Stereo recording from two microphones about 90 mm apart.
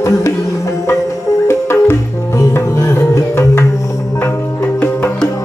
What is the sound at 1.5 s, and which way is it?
Music, 30° left (ahead or behind).